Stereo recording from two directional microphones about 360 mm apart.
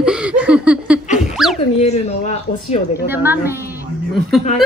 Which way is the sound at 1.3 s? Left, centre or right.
Centre.